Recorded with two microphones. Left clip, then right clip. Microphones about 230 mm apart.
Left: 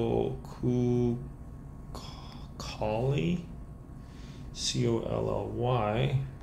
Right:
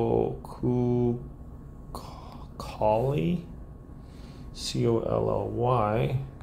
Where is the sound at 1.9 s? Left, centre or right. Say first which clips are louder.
Right 4 dB; centre.